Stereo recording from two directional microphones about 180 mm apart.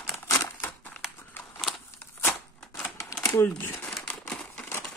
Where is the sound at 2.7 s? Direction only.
15° left (ahead or behind).